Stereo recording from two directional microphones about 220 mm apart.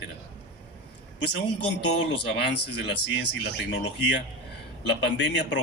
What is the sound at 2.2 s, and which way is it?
Speech, 50° left (ahead or behind).